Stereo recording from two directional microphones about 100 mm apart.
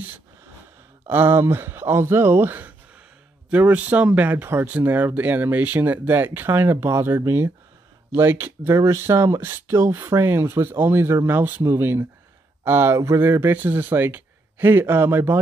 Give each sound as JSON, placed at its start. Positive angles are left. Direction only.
{"t": 1.0, "sound": "speech", "side_deg": -20}